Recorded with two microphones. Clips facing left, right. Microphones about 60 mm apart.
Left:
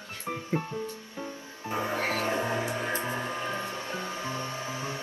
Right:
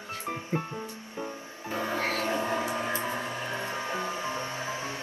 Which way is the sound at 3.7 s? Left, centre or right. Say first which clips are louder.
Right 3 dB; right.